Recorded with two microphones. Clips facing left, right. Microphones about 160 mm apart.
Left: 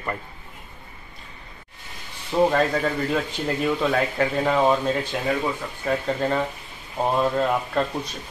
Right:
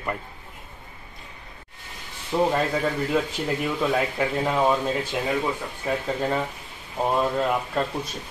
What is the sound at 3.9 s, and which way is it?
A man's voice, 5° right (ahead or behind).